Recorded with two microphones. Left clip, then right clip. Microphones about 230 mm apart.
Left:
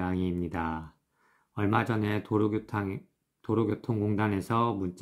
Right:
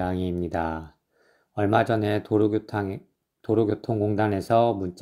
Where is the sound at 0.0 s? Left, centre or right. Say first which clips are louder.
Right 5 dB; centre.